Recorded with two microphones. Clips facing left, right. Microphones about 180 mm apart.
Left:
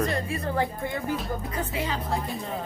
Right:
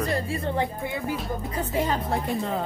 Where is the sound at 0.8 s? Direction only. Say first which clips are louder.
Even; 10° right (ahead or behind).